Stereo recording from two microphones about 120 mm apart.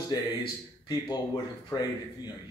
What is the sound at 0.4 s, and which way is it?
Speech, 35° left (ahead or behind).